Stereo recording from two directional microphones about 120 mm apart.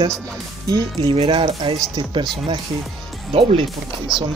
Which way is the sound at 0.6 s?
30° right (ahead or behind).